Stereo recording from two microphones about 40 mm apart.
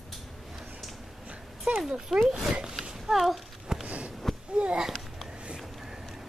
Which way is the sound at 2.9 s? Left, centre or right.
Centre.